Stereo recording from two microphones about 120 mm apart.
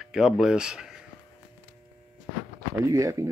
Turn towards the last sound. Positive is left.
turn(degrees=-25)  # may be behind; listen again after turning